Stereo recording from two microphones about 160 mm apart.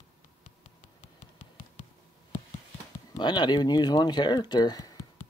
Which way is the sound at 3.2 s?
25° left (ahead or behind).